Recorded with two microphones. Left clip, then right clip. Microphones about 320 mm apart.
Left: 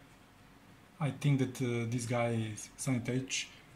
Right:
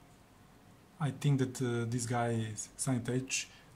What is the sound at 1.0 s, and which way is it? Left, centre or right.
Speech, centre.